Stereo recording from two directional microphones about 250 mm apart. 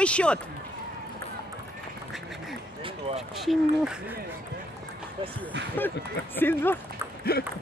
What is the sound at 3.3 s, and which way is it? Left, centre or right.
Speech, centre.